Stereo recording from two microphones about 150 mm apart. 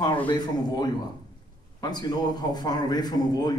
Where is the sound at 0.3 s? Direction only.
30° left (ahead or behind).